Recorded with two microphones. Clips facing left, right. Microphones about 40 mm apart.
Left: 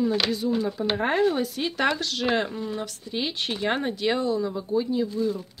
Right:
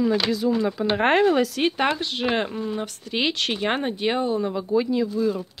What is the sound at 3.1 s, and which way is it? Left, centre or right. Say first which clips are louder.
Speech: right 5 dB; right.